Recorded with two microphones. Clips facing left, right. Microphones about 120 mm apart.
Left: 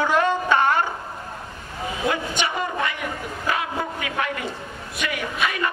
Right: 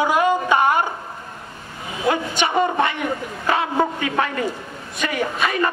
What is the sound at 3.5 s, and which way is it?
A man's voice, 30° right (ahead or behind).